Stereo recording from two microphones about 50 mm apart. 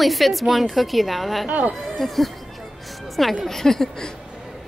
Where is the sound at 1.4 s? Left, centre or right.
Right.